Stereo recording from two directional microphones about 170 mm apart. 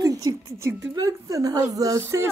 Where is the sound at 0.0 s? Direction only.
20° right (ahead or behind).